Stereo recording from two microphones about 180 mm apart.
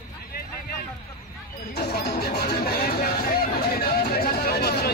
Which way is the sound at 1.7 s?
65° left (ahead or behind).